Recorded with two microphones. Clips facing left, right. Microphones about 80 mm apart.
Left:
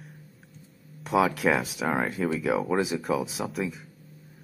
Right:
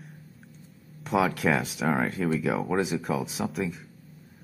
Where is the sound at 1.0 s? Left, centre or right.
Centre.